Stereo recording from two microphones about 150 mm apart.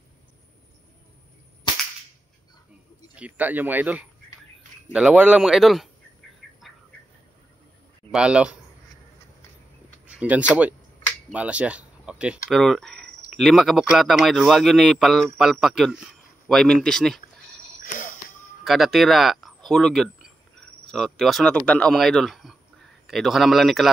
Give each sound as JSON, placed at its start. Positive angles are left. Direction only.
{"t": 3.2, "sound": "speech", "side_deg": -10}
{"t": 8.1, "sound": "speech", "side_deg": -5}
{"t": 10.0, "sound": "a sound", "side_deg": -10}
{"t": 11.3, "sound": "speech", "side_deg": -10}
{"t": 17.8, "sound": "wheeze", "side_deg": 60}
{"t": 18.6, "sound": "speech", "side_deg": 0}